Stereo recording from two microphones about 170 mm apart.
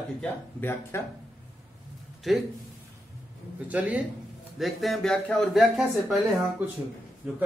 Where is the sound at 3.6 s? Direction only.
10° right (ahead or behind).